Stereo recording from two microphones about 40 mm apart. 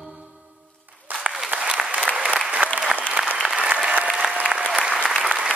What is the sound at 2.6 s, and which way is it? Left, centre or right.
Applause, right.